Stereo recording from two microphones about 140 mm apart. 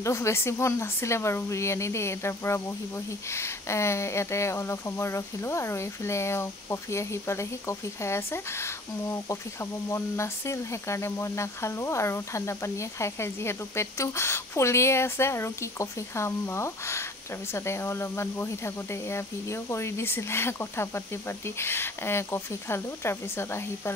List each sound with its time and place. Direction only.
0.0 s speech: 20° left (ahead or behind)